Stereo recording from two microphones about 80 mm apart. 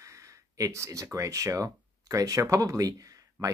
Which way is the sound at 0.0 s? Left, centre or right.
Right.